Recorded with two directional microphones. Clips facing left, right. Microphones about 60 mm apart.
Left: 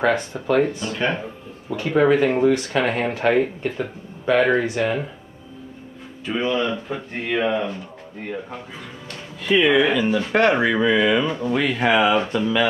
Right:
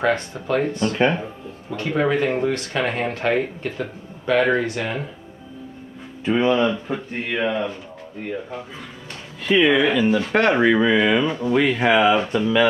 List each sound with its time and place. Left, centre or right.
0.1 s speech: centre
6.2 s speech: right
6.7 s speech: centre
9.4 s speech: centre